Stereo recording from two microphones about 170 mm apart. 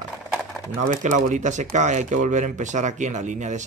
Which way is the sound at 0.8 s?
45° right (ahead or behind).